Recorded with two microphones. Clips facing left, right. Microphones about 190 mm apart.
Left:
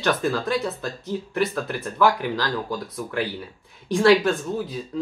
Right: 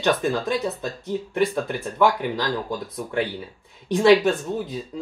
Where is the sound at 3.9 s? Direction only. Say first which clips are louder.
Right 1 dB; 20° right (ahead or behind).